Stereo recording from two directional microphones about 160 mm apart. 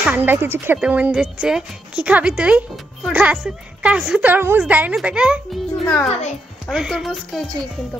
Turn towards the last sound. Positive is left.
turn(degrees=0)  # may be behind; listen again after turning